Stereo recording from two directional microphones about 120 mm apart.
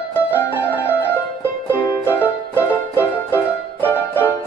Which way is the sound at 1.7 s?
15° left (ahead or behind).